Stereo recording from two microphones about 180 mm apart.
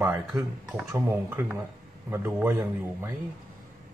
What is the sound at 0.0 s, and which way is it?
Speech, 15° right (ahead or behind).